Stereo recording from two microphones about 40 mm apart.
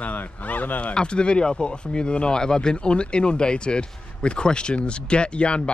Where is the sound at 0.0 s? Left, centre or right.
Left.